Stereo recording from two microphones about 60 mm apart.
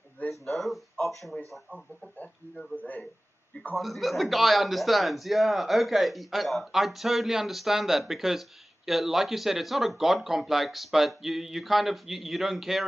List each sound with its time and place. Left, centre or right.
0.3 s a sound: centre
2.7 s speech: left
3.7 s speech: centre